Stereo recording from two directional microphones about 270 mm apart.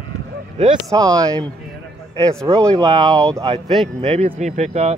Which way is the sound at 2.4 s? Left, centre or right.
Centre.